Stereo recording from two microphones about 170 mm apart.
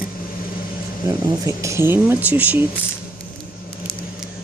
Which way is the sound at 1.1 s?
20° right (ahead or behind).